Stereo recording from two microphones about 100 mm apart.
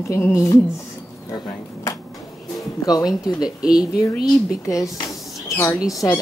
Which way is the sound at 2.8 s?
40° left (ahead or behind).